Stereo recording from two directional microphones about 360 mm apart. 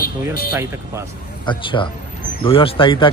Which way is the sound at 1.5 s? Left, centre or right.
Centre.